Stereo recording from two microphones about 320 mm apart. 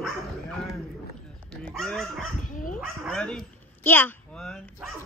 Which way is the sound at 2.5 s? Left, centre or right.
Left.